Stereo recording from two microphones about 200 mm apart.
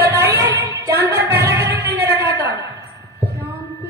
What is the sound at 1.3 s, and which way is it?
Music, 15° right (ahead or behind).